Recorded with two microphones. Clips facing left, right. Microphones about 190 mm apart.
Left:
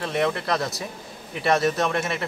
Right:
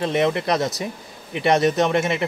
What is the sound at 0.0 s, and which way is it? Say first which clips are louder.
Speech: right 4 dB; 20° right (ahead or behind).